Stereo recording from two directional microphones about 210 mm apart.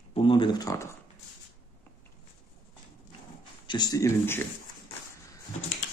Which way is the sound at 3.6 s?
20° left (ahead or behind).